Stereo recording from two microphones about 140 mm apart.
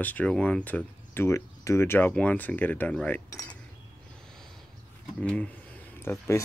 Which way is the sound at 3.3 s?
25° left (ahead or behind).